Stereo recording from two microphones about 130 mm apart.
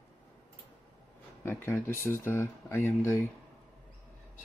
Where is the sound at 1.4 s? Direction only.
15° left (ahead or behind).